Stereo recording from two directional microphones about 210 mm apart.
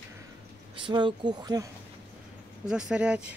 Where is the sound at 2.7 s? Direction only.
5° right (ahead or behind).